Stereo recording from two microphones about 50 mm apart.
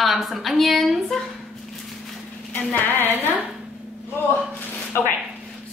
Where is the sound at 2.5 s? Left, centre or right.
Left.